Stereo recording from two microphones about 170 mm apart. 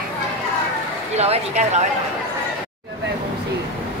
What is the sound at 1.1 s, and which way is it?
Speech, 40° right (ahead or behind).